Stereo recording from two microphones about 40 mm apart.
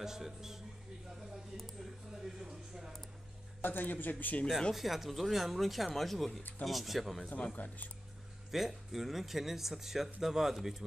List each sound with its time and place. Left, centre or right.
0.0 s speech: centre
2.1 s a sound: centre
3.6 s speech: left
4.7 s speech: centre
7.5 s speech: left
8.5 s speech: centre